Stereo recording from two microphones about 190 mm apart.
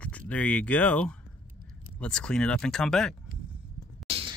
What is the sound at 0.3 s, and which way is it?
Speech, 5° left (ahead or behind).